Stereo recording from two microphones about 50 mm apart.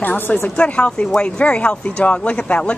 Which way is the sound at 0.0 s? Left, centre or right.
Left.